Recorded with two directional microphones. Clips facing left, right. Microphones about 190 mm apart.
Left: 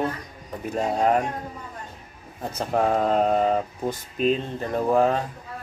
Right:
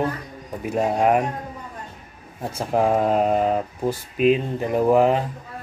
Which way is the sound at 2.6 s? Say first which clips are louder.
Right 2 dB; 10° right (ahead or behind).